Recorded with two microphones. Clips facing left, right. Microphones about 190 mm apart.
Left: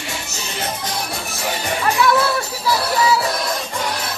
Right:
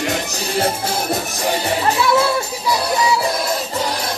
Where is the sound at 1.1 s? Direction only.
35° right (ahead or behind).